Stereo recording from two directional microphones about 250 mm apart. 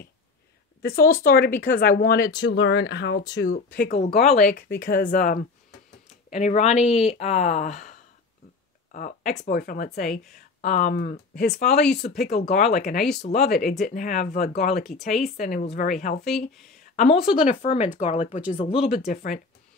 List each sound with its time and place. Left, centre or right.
0.8 s speech: left
8.9 s speech: left
14.8 s speech: centre
15.3 s speech: left
16.3 s speech: centre
16.8 s speech: left